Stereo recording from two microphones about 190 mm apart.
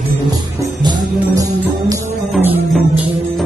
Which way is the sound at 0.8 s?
20° right (ahead or behind).